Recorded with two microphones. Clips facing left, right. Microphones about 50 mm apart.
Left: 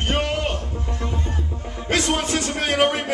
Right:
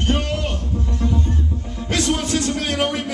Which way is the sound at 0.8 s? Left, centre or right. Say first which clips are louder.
Right 7 dB; left.